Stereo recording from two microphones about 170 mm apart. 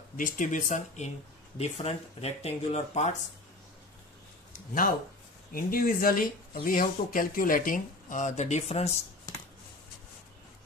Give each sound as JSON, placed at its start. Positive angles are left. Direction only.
{"t": 0.2, "sound": "speech", "side_deg": 50}
{"t": 4.5, "sound": "a sound", "side_deg": 55}
{"t": 5.5, "sound": "speech", "side_deg": 60}